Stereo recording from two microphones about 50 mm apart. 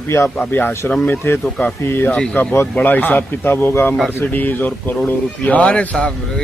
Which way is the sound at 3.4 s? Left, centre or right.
Left.